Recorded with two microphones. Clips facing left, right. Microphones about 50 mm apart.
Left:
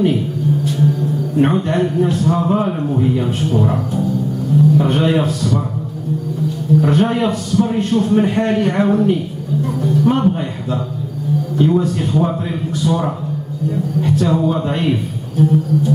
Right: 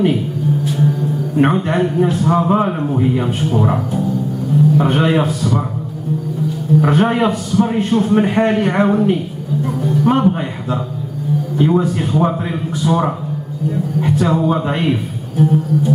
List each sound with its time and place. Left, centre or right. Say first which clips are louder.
0.7 s a man's voice: even; centre
6.8 s a man's voice: right 2 dB; centre